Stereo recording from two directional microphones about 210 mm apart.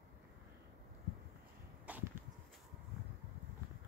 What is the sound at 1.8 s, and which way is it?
Arrow, 5° right (ahead or behind).